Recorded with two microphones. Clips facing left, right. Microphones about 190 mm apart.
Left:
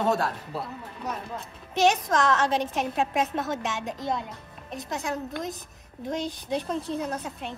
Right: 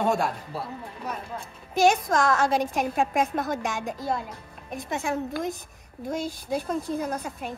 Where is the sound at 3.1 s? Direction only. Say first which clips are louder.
Right 2 dB; centre (ahead or behind).